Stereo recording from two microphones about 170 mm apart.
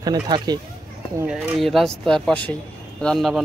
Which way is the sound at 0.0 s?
25° right (ahead or behind).